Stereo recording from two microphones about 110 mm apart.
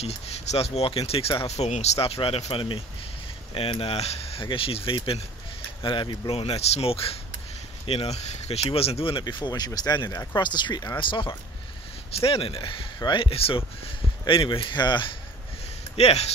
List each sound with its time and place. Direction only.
0.0 s speech: 65° left (ahead or behind)
1.7 s speech: 70° left (ahead or behind)
9.2 s speech: 40° left (ahead or behind)
16.0 s speech: 70° left (ahead or behind)